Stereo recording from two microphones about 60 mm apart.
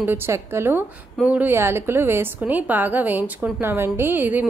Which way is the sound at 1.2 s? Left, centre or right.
Right.